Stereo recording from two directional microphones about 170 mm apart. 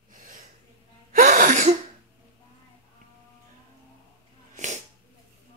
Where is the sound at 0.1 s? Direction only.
50° right (ahead or behind).